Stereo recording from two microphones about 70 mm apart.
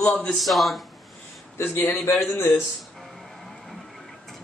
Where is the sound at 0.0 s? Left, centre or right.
Centre.